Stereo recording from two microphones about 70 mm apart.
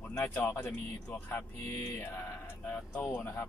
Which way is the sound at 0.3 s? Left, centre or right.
Left.